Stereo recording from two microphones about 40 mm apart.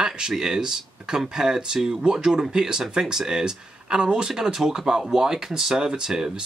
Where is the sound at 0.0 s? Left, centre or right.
Right.